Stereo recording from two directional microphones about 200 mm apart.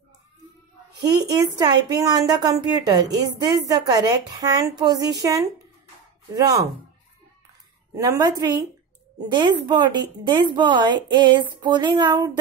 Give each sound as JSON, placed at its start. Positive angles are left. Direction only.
{"t": 1.0, "sound": "a woman's voice", "side_deg": -20}
{"t": 7.9, "sound": "a woman's voice", "side_deg": -20}